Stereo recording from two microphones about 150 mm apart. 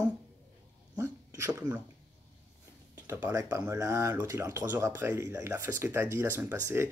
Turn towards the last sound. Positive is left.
turn(degrees=-15)  # may be behind; listen again after turning